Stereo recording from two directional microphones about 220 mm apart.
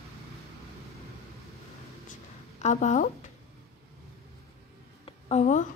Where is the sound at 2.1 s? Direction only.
35° left (ahead or behind).